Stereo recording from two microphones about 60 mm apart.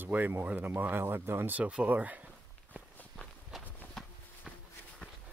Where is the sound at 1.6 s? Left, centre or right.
Right.